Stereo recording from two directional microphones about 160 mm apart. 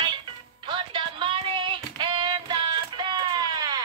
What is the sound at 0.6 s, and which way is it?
Music, 30° right (ahead or behind).